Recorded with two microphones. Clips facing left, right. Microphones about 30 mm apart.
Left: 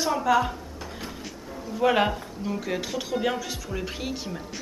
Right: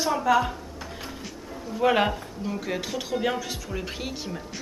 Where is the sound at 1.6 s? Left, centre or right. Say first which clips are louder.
Even; centre.